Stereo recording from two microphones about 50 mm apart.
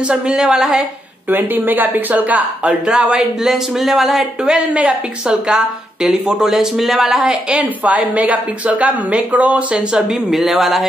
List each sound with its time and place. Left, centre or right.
0.1 s speech: centre
1.3 s speech: right
2.9 s speech: centre
3.2 s speech: centre
4.7 s a woman's voice: right
5.5 s speech: centre
7.4 s a woman's voice: right
9.9 s speech: centre